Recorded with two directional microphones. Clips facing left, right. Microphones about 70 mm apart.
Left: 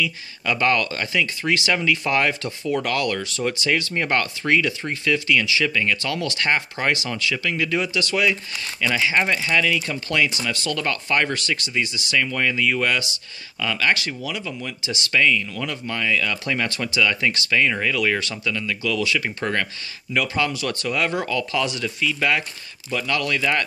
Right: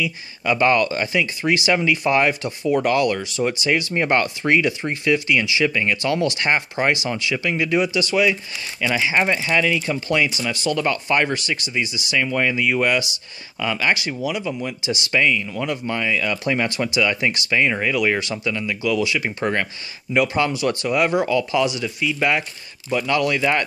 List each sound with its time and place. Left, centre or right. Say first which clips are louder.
0.0 s speech: right 1 dB; centre